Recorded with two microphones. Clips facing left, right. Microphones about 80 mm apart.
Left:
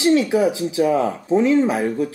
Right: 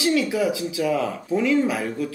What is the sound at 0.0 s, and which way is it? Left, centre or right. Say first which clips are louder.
Speech: left 5 dB; left.